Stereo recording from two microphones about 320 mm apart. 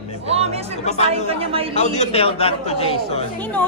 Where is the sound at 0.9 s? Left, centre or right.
Left.